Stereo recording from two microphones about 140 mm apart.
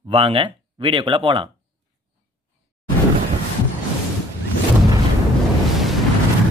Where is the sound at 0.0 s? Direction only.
40° right (ahead or behind).